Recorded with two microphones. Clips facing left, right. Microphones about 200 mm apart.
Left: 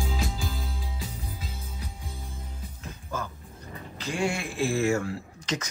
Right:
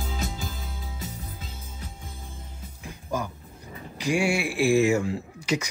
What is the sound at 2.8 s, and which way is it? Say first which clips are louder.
Music: right 5 dB; 15° right (ahead or behind).